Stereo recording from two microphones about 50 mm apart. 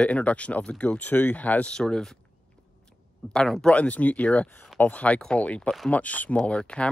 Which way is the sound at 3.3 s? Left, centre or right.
Centre.